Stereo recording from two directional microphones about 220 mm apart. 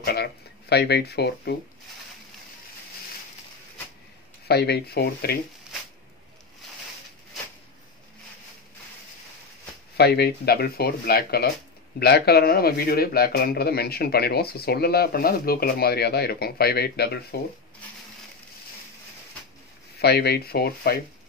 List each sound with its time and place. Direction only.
0.0 s speech: 45° left (ahead or behind)
4.5 s a man's voice: 45° left (ahead or behind)
9.9 s a man's voice: 45° left (ahead or behind)
20.0 s a man's voice: 45° left (ahead or behind)